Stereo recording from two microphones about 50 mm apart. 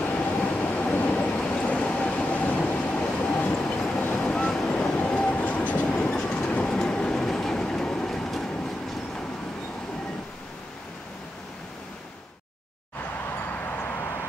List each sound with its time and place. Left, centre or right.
0.1 s train: left
6.1 s train: centre
13.7 s a sound: left